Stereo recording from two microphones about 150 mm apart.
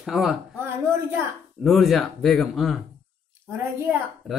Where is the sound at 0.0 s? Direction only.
Centre (ahead or behind).